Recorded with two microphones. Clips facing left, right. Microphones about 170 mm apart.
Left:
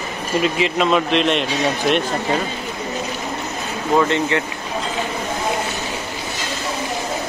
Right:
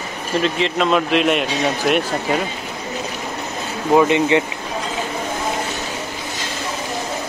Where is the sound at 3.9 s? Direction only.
15° right (ahead or behind).